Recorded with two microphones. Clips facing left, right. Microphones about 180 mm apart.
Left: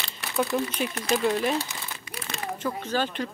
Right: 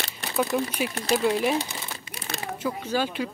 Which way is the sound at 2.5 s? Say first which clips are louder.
Right 1 dB; 10° right (ahead or behind).